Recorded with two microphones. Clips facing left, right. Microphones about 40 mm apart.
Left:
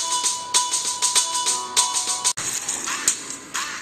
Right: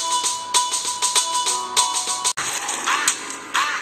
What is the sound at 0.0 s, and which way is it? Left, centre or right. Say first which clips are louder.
Music: right 3 dB; right.